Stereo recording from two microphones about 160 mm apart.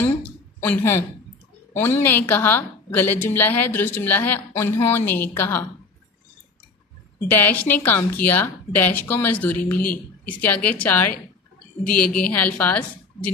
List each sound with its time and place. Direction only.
0.7 s a woman's voice: 15° left (ahead or behind)
7.2 s a woman's voice: 10° left (ahead or behind)